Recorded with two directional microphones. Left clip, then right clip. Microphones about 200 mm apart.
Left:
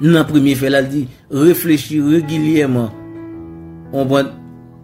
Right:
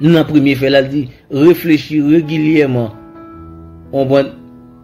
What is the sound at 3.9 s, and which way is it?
Speech, 20° left (ahead or behind).